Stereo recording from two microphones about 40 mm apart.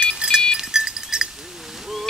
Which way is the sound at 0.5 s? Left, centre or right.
Centre.